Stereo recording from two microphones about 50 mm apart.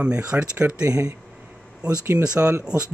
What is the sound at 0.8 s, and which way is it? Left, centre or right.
Speech, right.